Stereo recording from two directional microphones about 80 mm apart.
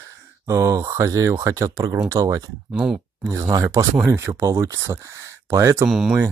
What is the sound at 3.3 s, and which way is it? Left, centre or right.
Speech, right.